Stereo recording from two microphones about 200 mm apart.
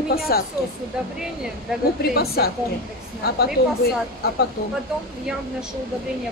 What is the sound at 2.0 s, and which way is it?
Speech, 50° left (ahead or behind).